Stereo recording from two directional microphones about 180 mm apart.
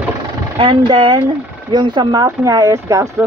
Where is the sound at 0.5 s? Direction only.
25° right (ahead or behind).